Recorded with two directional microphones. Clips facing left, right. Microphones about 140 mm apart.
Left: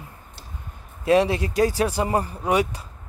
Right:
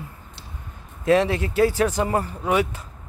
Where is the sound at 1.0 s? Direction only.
15° left (ahead or behind).